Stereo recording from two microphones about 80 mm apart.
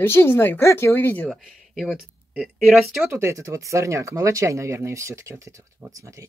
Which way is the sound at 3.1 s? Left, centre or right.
Right.